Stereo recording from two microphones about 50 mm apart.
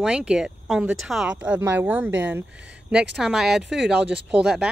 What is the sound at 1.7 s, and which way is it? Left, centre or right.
Speech, right.